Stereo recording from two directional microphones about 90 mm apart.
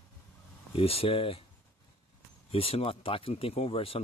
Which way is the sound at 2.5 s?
90° left.